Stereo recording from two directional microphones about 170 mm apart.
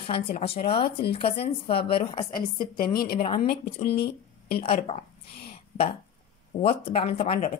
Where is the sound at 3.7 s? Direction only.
35° left (ahead or behind).